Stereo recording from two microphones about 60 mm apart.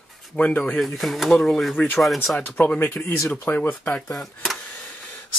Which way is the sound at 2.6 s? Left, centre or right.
Left.